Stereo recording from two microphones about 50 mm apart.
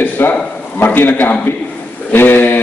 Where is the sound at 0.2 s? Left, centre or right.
Left.